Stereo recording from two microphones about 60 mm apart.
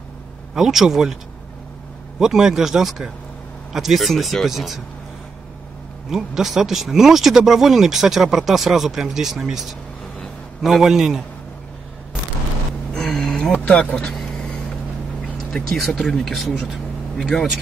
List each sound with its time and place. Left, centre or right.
0.6 s speech: centre
2.1 s speech: centre
6.0 s speech: centre
12.9 s a sound: centre
13.5 s speech: left
13.9 s vehicle: centre
15.5 s speech: centre